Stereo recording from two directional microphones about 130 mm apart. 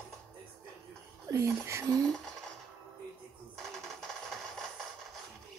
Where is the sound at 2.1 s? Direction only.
5° left (ahead or behind).